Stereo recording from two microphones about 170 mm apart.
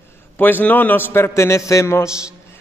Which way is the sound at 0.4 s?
10° left (ahead or behind).